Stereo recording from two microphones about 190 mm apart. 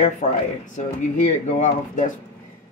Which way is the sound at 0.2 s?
35° left (ahead or behind).